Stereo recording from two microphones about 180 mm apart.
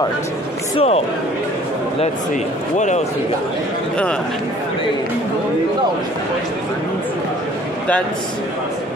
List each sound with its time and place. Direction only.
0.7 s speech: 35° left (ahead or behind)